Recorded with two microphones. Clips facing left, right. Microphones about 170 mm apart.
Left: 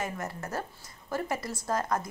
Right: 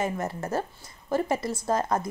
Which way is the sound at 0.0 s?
25° right (ahead or behind).